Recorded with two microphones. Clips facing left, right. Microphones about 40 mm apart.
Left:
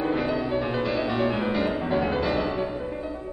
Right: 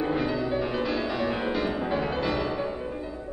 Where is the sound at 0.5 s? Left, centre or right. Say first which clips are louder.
Left 1 dB; centre.